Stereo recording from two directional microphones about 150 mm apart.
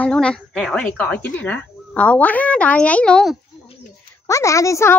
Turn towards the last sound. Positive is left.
turn(degrees=20)  # may be behind; listen again after turning